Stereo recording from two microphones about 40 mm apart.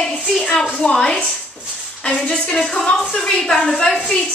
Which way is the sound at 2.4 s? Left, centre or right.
Centre.